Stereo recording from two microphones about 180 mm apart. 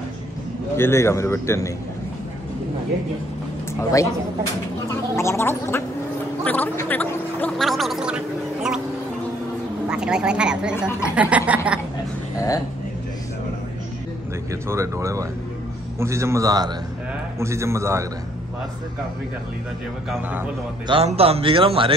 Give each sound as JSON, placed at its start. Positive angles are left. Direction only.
{"t": 0.7, "sound": "speech", "side_deg": 15}
{"t": 4.8, "sound": "speech", "side_deg": 15}
{"t": 9.8, "sound": "a woman's voice", "side_deg": -5}
{"t": 12.4, "sound": "speech", "side_deg": 20}
{"t": 14.5, "sound": "speech", "side_deg": -15}
{"t": 20.1, "sound": "speech", "side_deg": -10}
{"t": 20.8, "sound": "speech", "side_deg": -30}